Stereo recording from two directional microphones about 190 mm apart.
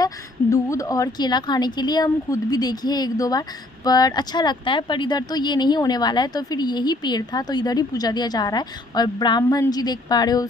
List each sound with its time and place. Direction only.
0.0 s a woman's voice: 15° left (ahead or behind)